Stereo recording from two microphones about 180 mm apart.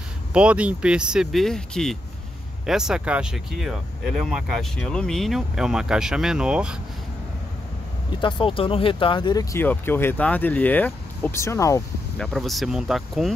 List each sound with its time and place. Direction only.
0.3 s speech: 5° right (ahead or behind)
8.2 s speech: 25° left (ahead or behind)
12.2 s speech: centre (ahead or behind)